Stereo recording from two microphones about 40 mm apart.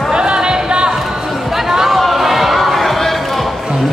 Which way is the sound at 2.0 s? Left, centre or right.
Centre.